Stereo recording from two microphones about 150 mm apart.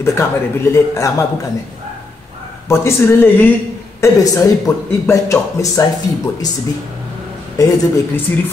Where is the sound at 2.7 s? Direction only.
15° left (ahead or behind).